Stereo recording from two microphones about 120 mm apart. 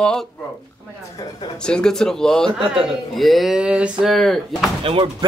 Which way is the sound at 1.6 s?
5° left (ahead or behind).